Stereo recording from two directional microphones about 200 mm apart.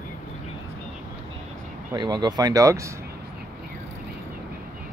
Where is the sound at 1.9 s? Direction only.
20° right (ahead or behind).